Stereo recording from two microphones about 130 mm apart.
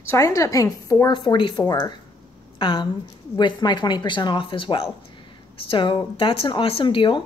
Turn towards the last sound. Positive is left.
turn(degrees=40)  # may be behind; listen again after turning